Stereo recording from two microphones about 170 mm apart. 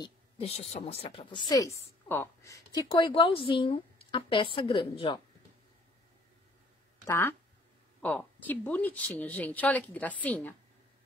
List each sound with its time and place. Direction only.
0.4 s speech: 40° left (ahead or behind)
2.0 s a woman's voice: 15° left (ahead or behind); by 5.2 s 35° left (ahead or behind)
7.1 s a woman's voice: 15° left (ahead or behind)